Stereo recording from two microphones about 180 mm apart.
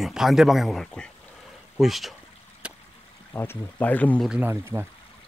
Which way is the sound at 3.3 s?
10° left (ahead or behind).